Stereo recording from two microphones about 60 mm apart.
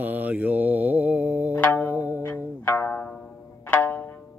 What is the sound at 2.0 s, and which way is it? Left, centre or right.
Music, left.